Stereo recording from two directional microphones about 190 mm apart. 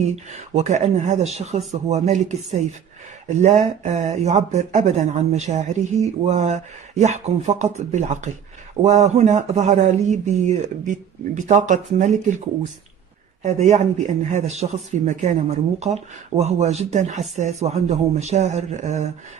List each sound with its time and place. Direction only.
0.1 s speech: 35° right (ahead or behind)
13.4 s speech: 35° right (ahead or behind)